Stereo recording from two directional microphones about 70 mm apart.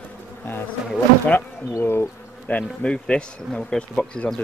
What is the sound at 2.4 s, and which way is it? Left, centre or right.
Speech, centre.